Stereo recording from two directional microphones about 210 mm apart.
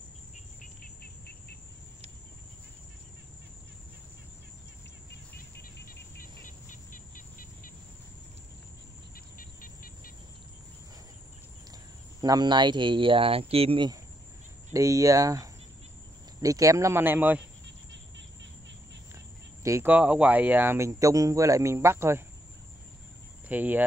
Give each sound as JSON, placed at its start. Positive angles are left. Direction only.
{"t": 0.6, "sound": "cricket", "side_deg": 45}
{"t": 5.6, "sound": "cricket", "side_deg": 50}
{"t": 6.4, "sound": "insect", "side_deg": 40}
{"t": 9.1, "sound": "music", "side_deg": 40}
{"t": 12.2, "sound": "speech", "side_deg": -20}
{"t": 17.6, "sound": "a sound", "side_deg": -60}
{"t": 19.6, "sound": "speech", "side_deg": -10}
{"t": 23.5, "sound": "speech", "side_deg": -10}